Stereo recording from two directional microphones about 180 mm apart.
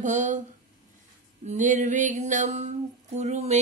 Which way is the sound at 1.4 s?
40° right (ahead or behind).